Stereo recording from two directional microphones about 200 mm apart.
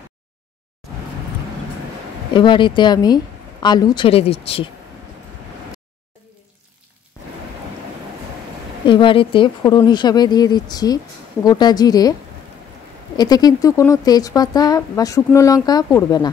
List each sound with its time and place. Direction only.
2.3 s speech: 25° left (ahead or behind)
8.8 s speech: 25° left (ahead or behind)